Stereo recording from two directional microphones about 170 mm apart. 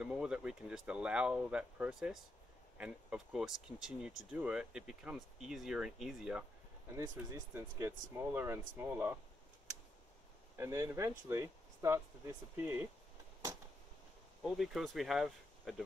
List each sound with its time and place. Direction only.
0.0 s speech: 5° right (ahead or behind)
7.0 s speech: 15° right (ahead or behind)
10.5 s speech: 15° right (ahead or behind)
14.4 s speech: centre (ahead or behind)